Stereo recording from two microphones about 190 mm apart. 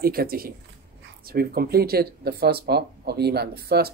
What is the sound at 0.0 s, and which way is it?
Speech, 55° right (ahead or behind).